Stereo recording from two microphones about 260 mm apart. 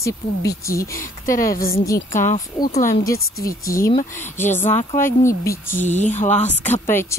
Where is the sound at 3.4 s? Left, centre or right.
Centre.